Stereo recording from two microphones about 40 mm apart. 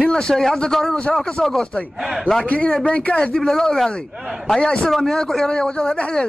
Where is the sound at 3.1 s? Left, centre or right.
Centre.